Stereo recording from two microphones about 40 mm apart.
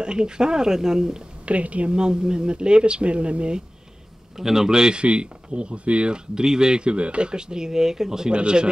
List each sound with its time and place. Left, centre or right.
0.0 s speech: right
1.4 s speech: right
1.9 s speech: right
4.4 s speech: centre